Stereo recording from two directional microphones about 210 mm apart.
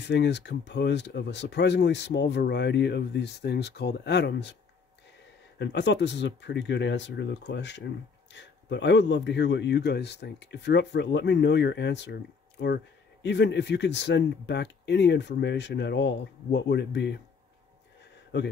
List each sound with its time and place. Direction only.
0.0 s speech: 55° left (ahead or behind)
5.6 s speech: 55° left (ahead or behind)